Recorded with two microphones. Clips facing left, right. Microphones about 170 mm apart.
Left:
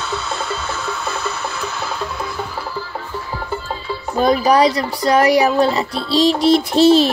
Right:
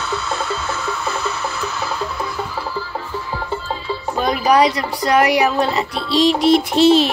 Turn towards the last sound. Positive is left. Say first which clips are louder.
# left 1 dB
turn(degrees=35)  # may be behind; listen again after turning